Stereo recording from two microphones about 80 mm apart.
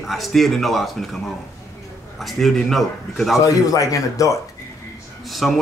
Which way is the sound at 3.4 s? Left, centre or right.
Left.